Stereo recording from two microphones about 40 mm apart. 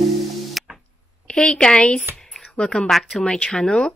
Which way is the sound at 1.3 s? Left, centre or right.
Left.